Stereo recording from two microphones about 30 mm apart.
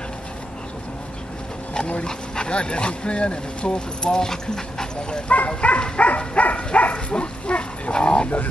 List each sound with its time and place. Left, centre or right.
2.0 s speech: left
4.3 s dog: left
5.5 s dog: left
6.5 s a sound: left
7.2 s pig: left